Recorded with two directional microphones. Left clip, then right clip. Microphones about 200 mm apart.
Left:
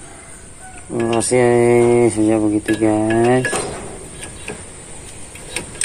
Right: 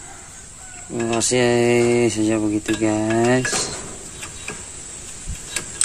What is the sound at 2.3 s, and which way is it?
Speech, 35° right (ahead or behind).